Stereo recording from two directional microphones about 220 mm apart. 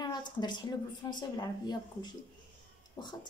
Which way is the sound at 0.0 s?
20° left (ahead or behind).